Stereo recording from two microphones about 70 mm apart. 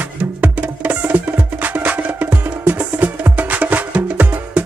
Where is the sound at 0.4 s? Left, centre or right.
Right.